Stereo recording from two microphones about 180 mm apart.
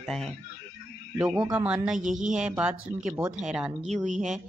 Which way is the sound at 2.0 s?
45° right (ahead or behind).